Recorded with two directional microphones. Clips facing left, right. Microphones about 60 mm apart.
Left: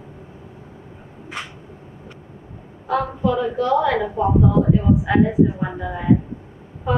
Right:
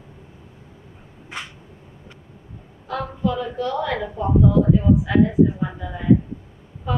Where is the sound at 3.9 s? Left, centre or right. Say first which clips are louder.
Left 5 dB; left.